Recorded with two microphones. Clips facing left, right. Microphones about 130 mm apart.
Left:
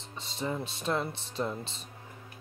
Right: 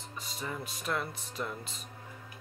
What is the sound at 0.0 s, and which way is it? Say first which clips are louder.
Speech: left 5 dB; 25° left (ahead or behind).